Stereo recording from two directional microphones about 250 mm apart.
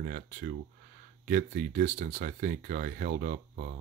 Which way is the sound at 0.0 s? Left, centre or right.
Right.